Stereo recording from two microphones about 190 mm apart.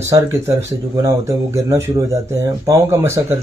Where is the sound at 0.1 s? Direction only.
15° right (ahead or behind).